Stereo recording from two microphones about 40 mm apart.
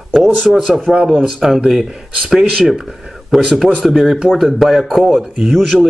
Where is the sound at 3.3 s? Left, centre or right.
Centre.